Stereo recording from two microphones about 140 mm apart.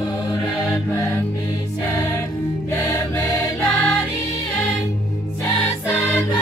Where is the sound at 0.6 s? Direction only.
20° left (ahead or behind).